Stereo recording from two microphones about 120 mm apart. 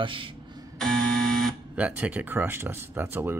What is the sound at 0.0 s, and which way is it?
Speech, 45° right (ahead or behind).